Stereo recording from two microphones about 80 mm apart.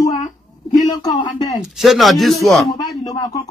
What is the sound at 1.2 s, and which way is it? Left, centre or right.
Speech, left.